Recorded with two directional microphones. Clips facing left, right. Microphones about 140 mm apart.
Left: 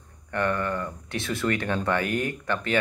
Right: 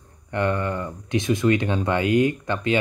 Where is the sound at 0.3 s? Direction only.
20° right (ahead or behind).